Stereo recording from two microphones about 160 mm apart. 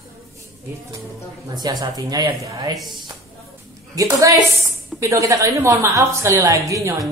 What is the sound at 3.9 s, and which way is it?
A woman's voice, 20° right (ahead or behind).